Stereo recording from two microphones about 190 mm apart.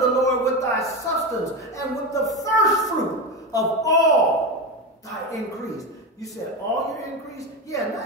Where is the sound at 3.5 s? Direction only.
20° left (ahead or behind).